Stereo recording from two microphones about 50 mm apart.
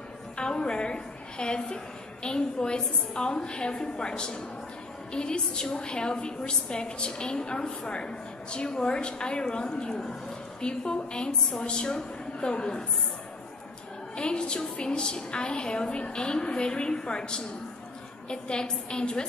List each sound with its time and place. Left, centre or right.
0.4 s a sound: centre
2.2 s a woman's voice: centre
14.1 s a woman's voice: centre